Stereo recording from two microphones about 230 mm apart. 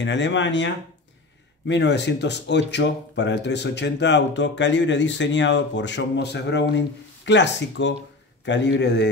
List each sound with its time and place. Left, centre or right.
0.0 s speech: left
1.7 s speech: left